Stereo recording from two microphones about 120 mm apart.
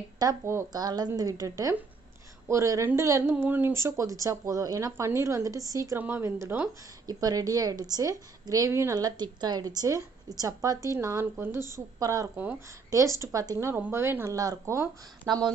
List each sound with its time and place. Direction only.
0.2 s speech: 25° right (ahead or behind)
5.9 s speech: 15° right (ahead or behind)
7.1 s a woman's voice: 30° right (ahead or behind)
15.2 s a woman's voice: 40° right (ahead or behind)